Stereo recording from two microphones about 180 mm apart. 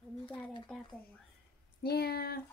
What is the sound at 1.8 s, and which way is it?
Speech, 60° left (ahead or behind).